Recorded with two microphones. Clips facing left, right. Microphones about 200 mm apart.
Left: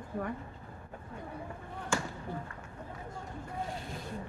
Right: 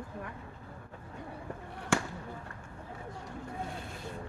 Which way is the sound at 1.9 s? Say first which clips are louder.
Right 3 dB; 70° right (ahead or behind).